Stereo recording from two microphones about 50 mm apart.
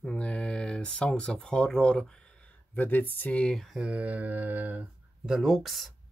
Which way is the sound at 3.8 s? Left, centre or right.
Right.